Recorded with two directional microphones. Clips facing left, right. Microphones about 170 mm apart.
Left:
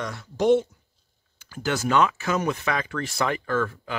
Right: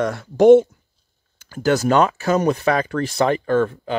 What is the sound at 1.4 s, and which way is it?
Speech, 40° right (ahead or behind).